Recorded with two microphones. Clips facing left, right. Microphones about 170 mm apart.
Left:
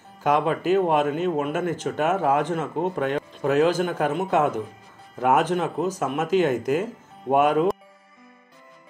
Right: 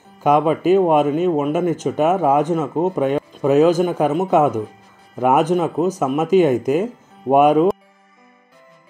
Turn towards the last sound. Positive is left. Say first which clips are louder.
# right 6 dB
turn(degrees=-20)  # may be behind; listen again after turning